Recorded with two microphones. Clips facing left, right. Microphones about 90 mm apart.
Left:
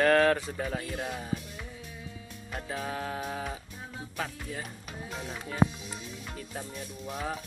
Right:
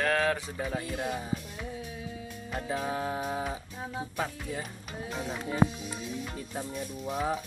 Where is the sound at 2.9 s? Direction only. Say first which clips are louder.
Right 3 dB; 20° right (ahead or behind).